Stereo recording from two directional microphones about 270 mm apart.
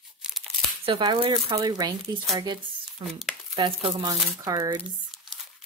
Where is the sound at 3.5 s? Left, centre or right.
Centre.